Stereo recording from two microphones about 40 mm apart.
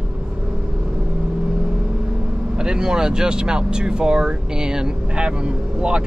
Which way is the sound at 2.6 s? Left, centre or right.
Centre.